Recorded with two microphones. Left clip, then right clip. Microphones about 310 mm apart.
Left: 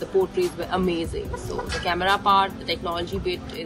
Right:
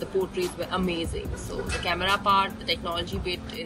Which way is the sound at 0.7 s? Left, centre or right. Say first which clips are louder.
Left 4 dB; centre.